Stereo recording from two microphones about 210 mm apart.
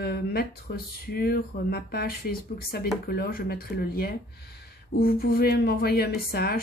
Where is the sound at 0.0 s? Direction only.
50° left (ahead or behind).